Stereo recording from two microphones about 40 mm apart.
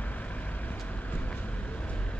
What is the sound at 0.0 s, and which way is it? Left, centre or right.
Vehicle, left.